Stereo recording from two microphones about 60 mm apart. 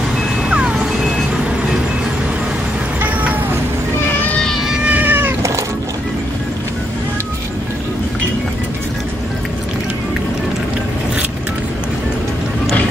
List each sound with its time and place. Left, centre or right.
0.5 s music: centre
3.0 s cat: right
4.8 s cat: right